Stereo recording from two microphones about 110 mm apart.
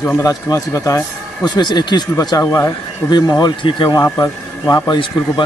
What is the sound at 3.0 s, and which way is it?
Speech, 40° left (ahead or behind).